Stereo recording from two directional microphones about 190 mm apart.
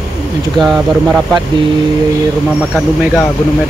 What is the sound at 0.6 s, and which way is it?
Speech, centre (ahead or behind).